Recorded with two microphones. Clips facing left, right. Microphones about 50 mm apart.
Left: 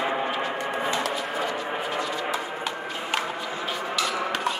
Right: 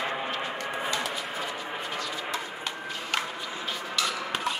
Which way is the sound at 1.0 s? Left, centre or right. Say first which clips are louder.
Left 5 dB; centre.